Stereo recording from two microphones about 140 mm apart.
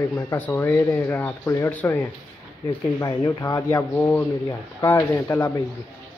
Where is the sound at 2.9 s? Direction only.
25° left (ahead or behind).